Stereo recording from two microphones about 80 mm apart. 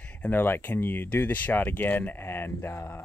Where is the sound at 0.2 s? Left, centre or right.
Left.